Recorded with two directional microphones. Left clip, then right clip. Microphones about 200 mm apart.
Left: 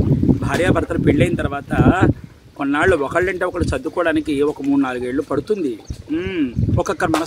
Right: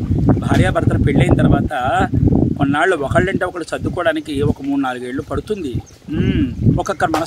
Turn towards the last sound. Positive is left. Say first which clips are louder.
# right 2 dB
turn(degrees=-5)  # may be behind; listen again after turning